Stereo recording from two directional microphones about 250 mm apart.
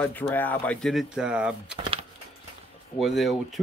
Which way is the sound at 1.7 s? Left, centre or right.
Right.